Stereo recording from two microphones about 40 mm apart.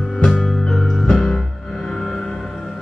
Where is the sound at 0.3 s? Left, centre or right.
Centre.